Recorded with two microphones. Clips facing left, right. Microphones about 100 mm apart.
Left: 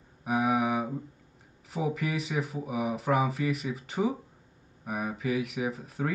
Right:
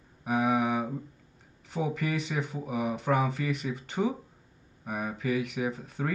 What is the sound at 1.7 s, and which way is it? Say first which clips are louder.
Speech: even; 5° left (ahead or behind).